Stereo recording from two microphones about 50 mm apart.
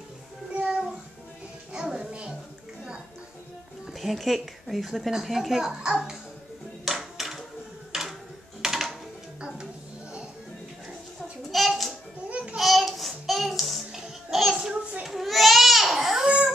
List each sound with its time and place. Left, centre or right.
0.6 s a sound: right
1.7 s music: centre
3.8 s speech: centre
6.8 s music: centre
7.9 s a sound: centre
8.6 s music: centre
11.5 s a sound: centre
12.3 s a sound: right
12.5 s child singing: centre
14.7 s children playing: right
15.0 s baby cry: centre
16.3 s baby cry: centre